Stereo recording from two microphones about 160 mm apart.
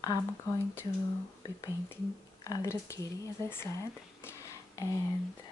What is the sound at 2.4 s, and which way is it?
Speech, 20° left (ahead or behind).